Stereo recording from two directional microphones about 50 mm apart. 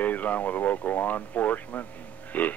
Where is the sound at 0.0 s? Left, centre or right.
Left.